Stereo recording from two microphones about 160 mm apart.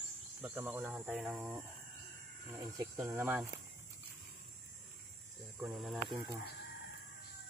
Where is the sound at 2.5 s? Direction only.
15° right (ahead or behind).